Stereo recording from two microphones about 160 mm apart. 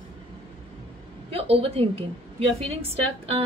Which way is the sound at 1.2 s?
40° right (ahead or behind).